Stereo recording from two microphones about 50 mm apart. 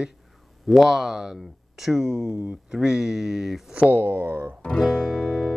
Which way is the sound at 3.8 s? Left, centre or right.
Right.